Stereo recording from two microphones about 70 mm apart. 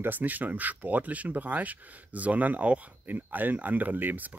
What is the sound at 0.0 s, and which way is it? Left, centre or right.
Speech, right.